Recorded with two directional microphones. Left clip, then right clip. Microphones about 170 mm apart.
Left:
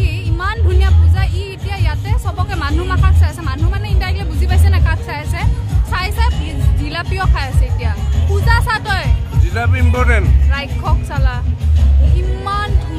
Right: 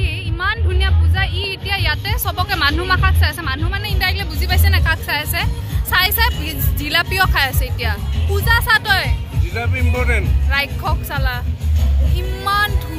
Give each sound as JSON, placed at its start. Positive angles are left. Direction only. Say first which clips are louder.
{"t": 0.0, "sound": "music", "louder": "right 1 dB", "side_deg": 20}
{"t": 1.1, "sound": "speech", "louder": "right 5 dB", "side_deg": 0}
{"t": 8.5, "sound": "speech", "louder": "right 3 dB", "side_deg": 5}
{"t": 10.5, "sound": "speech", "louder": "right 4 dB", "side_deg": -5}
{"t": 12.4, "sound": "speech", "louder": "right 3 dB", "side_deg": 5}